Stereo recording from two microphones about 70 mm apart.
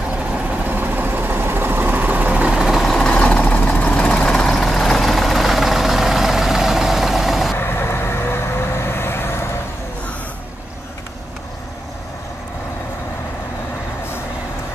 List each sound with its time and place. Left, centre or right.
0.3 s vehicle: right
2.6 s vehicle: centre
3.1 s vehicle: centre
7.5 s vehicle: left